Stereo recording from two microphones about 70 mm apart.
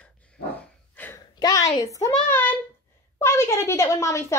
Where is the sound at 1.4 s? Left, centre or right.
Left.